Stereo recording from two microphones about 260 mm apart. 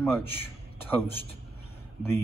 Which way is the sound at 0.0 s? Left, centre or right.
Centre.